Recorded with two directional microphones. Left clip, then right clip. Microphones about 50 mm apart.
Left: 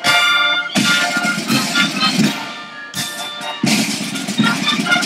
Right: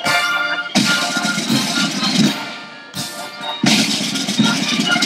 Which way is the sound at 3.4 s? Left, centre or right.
Centre.